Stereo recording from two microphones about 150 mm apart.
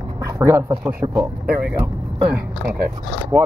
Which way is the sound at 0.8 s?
15° right (ahead or behind).